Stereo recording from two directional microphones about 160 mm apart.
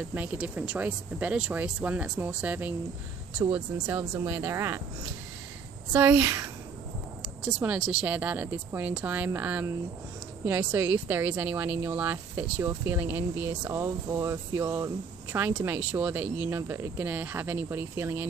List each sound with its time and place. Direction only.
0.1 s speech: 10° right (ahead or behind)
4.1 s speech: 15° right (ahead or behind)
5.9 s speech: 10° right (ahead or behind)